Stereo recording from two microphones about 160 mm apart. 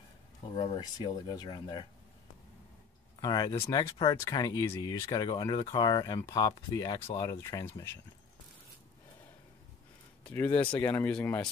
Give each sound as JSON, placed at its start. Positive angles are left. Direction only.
{"t": 0.6, "sound": "speech", "side_deg": 30}
{"t": 3.2, "sound": "speech", "side_deg": 25}
{"t": 10.2, "sound": "speech", "side_deg": 10}
{"t": 10.5, "sound": "speech", "side_deg": 30}
{"t": 10.8, "sound": "speech", "side_deg": 10}